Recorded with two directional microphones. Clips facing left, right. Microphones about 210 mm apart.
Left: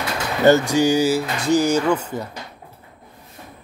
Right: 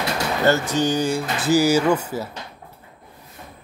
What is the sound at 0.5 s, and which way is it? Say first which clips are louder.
Speech: left 6 dB; 10° left (ahead or behind).